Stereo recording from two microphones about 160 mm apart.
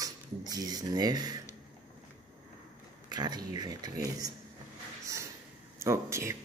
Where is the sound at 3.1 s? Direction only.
25° right (ahead or behind).